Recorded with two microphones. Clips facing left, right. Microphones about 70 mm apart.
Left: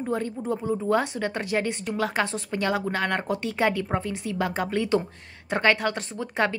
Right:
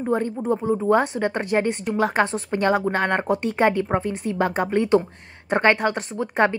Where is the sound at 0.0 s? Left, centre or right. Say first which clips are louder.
Right 5 dB; right.